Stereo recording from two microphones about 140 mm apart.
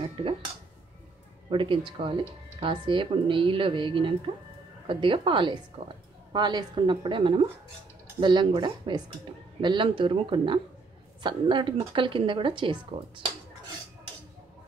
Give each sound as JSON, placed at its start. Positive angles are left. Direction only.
{"t": 0.0, "sound": "speech", "side_deg": -40}
{"t": 1.5, "sound": "a woman's voice", "side_deg": -35}